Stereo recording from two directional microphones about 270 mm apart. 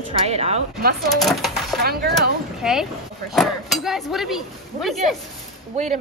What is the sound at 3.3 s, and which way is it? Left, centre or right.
Speech, centre.